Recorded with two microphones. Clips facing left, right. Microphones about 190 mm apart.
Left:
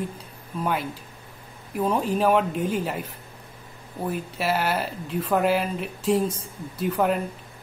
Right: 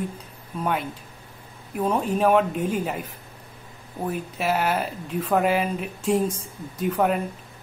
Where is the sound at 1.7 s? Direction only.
Centre (ahead or behind).